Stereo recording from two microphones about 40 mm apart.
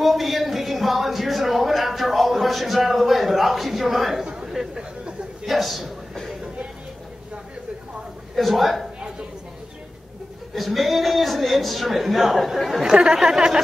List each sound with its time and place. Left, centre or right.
0.0 s a sound: centre
4.2 s speech: centre
5.4 s a man's voice: centre
8.4 s a man's voice: centre
10.5 s a man's voice: centre
12.8 s speech: centre